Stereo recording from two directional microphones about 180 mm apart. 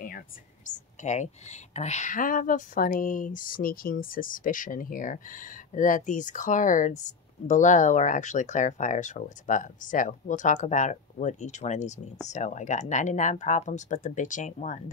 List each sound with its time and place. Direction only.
0.7 s speech: 40° left (ahead or behind)